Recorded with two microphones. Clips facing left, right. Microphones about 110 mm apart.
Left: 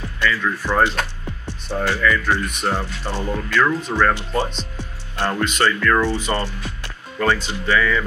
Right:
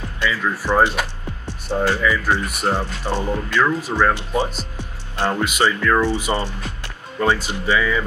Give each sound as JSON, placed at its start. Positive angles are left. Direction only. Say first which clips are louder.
{"t": 0.2, "sound": "speech", "louder": "left 1 dB", "side_deg": -10}